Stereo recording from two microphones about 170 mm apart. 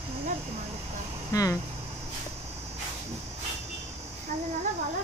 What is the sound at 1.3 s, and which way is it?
Speech, 20° left (ahead or behind).